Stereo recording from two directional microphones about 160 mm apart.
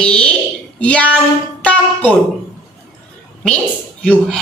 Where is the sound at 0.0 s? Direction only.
5° left (ahead or behind).